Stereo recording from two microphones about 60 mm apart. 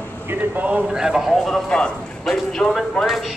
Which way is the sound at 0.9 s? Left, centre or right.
Centre.